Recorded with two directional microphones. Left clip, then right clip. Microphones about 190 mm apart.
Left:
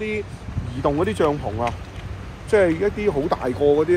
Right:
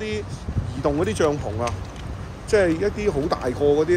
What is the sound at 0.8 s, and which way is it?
Speech, 35° left (ahead or behind).